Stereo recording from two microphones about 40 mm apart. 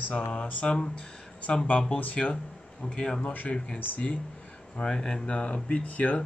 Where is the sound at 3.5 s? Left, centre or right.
Left.